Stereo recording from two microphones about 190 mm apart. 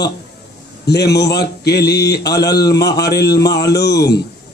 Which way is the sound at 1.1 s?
60° left (ahead or behind).